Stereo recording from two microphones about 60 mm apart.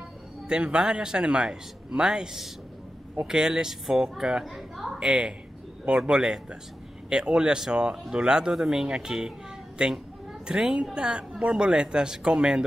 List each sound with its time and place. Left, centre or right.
0.5 s a woman's voice: centre
4.9 s a woman's voice: centre